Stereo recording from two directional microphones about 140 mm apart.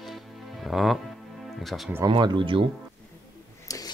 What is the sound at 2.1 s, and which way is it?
Speech, 35° right (ahead or behind).